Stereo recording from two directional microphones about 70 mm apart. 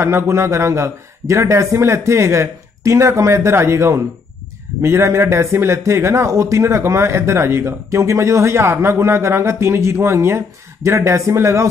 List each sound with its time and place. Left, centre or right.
0.0 s speech: right